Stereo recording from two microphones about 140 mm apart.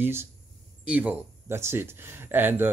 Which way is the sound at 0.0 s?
15° right (ahead or behind).